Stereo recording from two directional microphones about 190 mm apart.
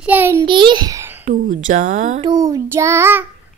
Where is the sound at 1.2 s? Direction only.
45° right (ahead or behind).